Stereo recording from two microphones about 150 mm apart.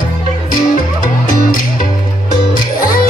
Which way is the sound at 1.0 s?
65° left (ahead or behind).